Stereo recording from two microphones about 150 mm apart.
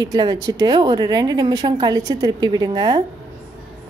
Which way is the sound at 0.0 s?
25° right (ahead or behind).